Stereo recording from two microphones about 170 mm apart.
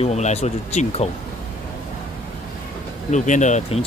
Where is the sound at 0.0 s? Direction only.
40° left (ahead or behind).